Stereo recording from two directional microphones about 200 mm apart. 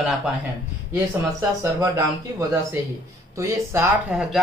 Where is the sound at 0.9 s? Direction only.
15° right (ahead or behind).